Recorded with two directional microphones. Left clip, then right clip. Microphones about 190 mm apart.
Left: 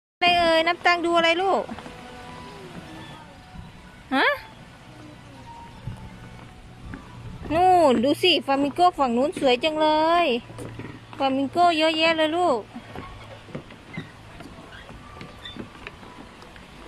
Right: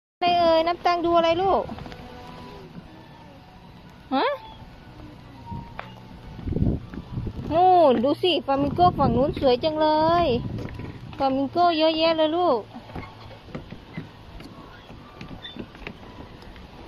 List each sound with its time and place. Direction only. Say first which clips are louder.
0.2 s speech: even; 10° left (ahead or behind)
4.1 s speech: left 2 dB; 15° left (ahead or behind)
7.5 s speech: right 1 dB; 30° left (ahead or behind); by 12.6 s 15° left (ahead or behind)